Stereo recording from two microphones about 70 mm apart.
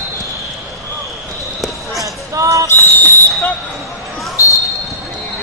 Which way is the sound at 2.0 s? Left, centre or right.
Right.